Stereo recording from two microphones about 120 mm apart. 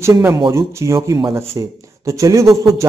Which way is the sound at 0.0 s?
25° right (ahead or behind).